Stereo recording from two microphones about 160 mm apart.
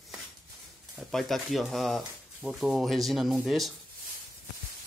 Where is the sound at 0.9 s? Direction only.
Centre (ahead or behind).